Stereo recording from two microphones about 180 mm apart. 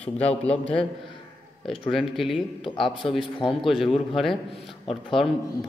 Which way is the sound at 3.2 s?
25° left (ahead or behind).